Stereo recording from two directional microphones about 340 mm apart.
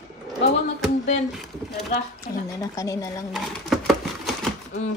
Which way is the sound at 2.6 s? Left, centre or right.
Centre.